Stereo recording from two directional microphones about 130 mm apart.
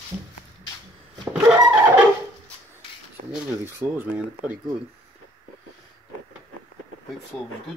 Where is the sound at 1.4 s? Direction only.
20° right (ahead or behind).